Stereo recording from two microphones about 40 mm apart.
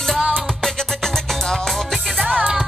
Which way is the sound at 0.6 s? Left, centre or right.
Centre.